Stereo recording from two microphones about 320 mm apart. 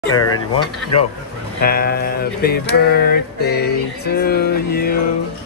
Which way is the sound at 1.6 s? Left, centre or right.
Left.